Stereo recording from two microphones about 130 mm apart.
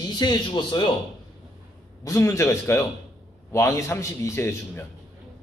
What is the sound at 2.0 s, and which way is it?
A man's voice, 25° left (ahead or behind).